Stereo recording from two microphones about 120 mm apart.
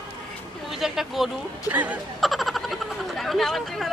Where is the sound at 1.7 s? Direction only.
15° right (ahead or behind).